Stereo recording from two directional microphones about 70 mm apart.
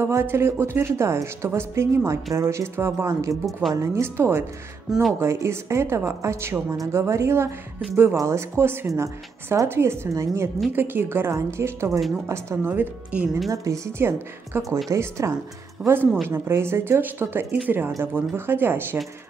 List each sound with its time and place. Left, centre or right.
0.0 s speech: right
4.9 s speech: centre
5.2 s speech: right
10.7 s speech: right
12.7 s speech: right
13.5 s speech: right
14.5 s speech: right